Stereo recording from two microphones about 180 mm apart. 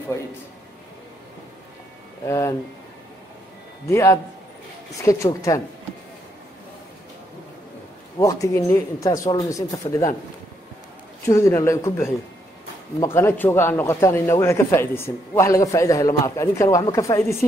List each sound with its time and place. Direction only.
2.2 s a man's voice: 15° left (ahead or behind)
3.8 s a man's voice: 15° left (ahead or behind)
8.2 s speech: 20° left (ahead or behind)
11.2 s a man's voice: 15° left (ahead or behind)